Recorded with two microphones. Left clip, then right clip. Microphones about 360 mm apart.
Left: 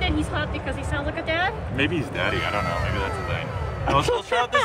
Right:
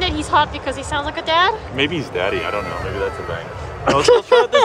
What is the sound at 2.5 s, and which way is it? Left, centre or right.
Speech, centre.